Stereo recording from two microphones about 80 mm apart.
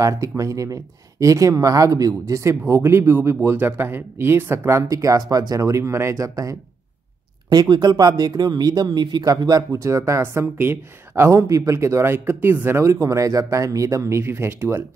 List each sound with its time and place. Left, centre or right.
0.0 s speech: right
7.4 s speech: right
8.8 s speech: right
9.3 s speech: right
10.2 s speech: right
12.8 s speech: right